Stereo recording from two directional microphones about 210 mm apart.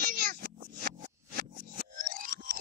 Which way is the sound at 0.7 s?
40° right (ahead or behind).